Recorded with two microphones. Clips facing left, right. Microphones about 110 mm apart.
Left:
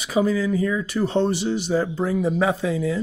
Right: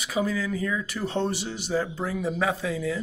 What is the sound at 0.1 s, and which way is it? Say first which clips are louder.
Speech: left 7 dB; 25° left (ahead or behind).